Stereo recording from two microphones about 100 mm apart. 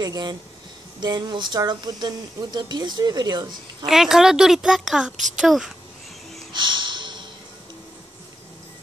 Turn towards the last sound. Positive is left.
turn(degrees=-50)  # may be behind; listen again after turning